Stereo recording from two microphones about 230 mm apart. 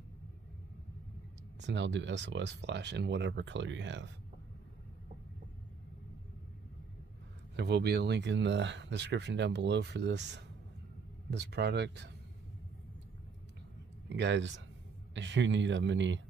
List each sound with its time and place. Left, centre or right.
1.6 s speech: right
7.5 s speech: right
14.0 s speech: right